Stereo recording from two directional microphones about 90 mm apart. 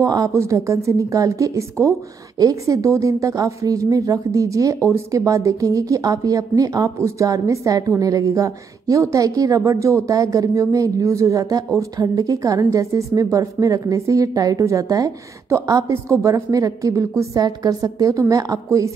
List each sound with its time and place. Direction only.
0.0 s a woman's voice: 40° right (ahead or behind)